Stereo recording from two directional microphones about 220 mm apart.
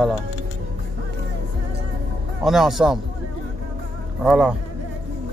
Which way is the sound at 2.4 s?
Centre (ahead or behind).